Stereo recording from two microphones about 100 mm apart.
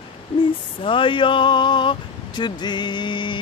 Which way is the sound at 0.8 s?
60° left (ahead or behind).